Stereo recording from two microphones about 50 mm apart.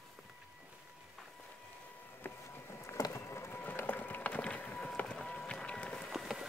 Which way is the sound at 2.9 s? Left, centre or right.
Left.